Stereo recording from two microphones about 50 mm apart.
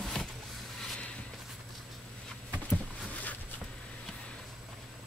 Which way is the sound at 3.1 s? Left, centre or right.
Left.